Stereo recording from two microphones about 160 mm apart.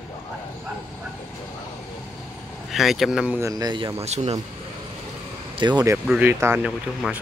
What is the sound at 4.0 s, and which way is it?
Speech, 40° right (ahead or behind).